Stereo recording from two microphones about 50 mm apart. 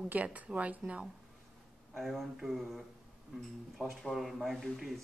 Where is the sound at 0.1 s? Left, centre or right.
Right.